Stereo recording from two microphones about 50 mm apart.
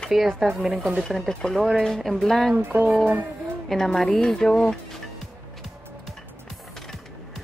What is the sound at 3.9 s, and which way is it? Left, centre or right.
Speech, centre.